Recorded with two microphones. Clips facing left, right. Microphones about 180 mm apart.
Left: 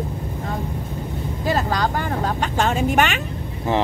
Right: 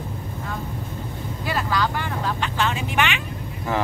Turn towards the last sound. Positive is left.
turn(degrees=45)  # may be behind; listen again after turning